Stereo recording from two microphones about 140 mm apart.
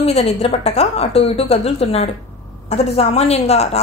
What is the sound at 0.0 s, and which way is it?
A woman's voice, 50° left (ahead or behind).